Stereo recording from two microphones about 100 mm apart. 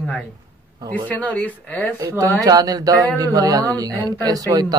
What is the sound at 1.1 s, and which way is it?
Speech, 15° left (ahead or behind).